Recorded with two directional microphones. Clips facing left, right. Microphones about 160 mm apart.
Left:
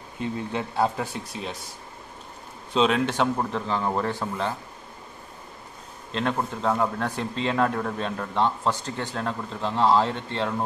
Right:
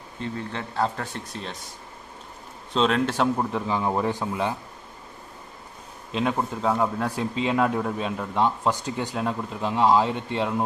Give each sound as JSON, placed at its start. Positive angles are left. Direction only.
{"t": 0.2, "sound": "speech", "side_deg": 15}
{"t": 2.7, "sound": "speech", "side_deg": 5}
{"t": 6.1, "sound": "speech", "side_deg": -5}